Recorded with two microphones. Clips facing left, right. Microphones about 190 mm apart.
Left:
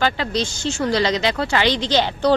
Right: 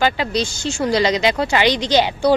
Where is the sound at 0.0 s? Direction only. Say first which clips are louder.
Right 2 dB; 15° right (ahead or behind).